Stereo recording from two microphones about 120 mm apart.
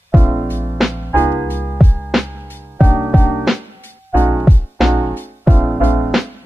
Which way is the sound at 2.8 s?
15° left (ahead or behind).